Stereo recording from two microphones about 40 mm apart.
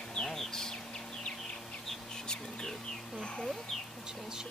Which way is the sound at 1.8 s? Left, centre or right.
Centre.